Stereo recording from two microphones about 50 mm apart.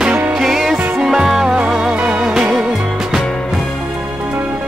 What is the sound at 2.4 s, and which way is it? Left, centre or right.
Music, centre.